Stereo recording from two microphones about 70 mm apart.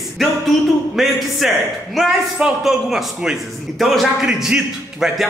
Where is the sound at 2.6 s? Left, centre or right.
Centre.